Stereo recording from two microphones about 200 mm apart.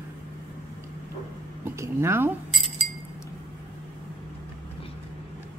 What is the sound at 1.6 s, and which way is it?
Speech, 10° right (ahead or behind).